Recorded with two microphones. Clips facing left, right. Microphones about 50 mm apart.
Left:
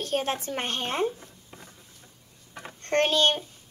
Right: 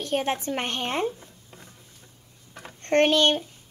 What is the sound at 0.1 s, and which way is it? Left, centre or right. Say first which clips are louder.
Speech: right 3 dB; right.